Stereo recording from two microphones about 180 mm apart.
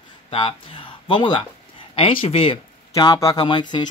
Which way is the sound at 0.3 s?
30° left (ahead or behind).